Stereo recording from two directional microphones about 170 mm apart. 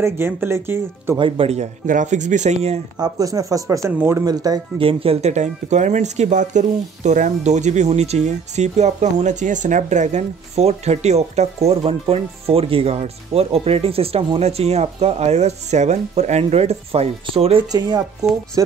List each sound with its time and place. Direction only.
0.0 s speech: 15° right (ahead or behind)
1.1 s speech: 30° right (ahead or behind)
3.0 s speech: 20° right (ahead or behind)
17.6 s speech: 25° right (ahead or behind)